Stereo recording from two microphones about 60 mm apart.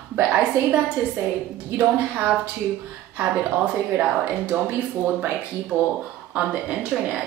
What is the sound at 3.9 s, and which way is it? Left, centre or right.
Speech, right.